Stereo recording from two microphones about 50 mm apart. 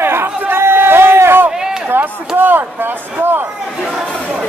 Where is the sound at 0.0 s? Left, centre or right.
Right.